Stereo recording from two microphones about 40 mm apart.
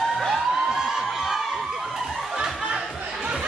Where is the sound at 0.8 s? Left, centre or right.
Centre.